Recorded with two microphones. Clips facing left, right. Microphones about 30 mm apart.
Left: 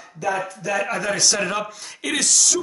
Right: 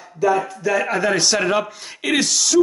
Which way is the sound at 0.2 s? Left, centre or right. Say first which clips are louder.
Right 6 dB; centre.